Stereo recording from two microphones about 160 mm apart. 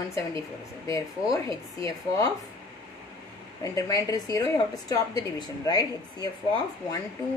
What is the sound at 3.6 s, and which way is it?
Speech, 20° left (ahead or behind).